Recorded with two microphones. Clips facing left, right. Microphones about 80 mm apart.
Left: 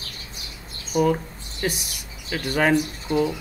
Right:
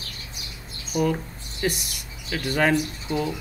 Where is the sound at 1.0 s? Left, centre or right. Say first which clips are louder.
Left 2 dB; centre.